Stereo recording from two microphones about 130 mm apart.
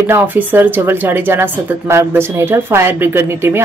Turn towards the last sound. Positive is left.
turn(degrees=-20)  # may be behind; listen again after turning